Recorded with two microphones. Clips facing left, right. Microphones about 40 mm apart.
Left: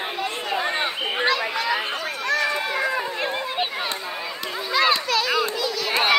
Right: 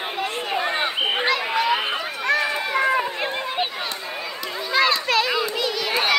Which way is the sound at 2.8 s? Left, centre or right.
Right.